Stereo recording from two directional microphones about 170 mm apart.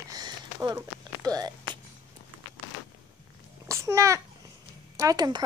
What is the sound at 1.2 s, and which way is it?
Walk, 20° right (ahead or behind).